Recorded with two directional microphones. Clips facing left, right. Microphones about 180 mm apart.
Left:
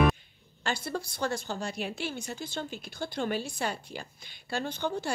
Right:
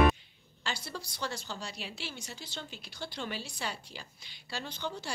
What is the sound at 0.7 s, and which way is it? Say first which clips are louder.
A woman's voice: left 7 dB; 55° left (ahead or behind).